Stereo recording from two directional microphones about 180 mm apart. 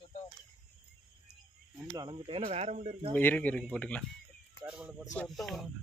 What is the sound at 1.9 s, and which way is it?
Speech, 25° right (ahead or behind).